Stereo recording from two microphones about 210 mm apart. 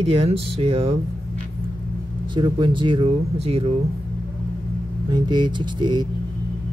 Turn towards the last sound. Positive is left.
turn(degrees=-20)  # may be behind; listen again after turning